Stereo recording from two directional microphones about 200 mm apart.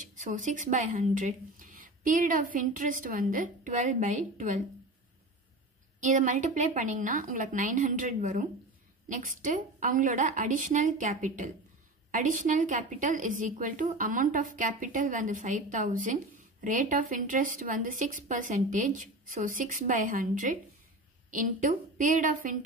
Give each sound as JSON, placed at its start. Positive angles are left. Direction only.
{"t": 0.0, "sound": "speech", "side_deg": -40}
{"t": 5.9, "sound": "speech", "side_deg": -40}